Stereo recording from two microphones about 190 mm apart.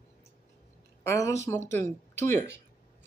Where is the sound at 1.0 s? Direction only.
15° left (ahead or behind).